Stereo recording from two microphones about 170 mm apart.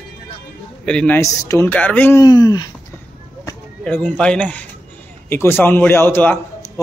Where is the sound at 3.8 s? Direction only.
10° left (ahead or behind).